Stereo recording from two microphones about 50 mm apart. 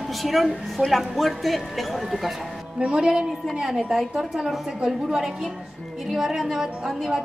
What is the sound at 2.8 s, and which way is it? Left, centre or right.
A woman's voice, centre.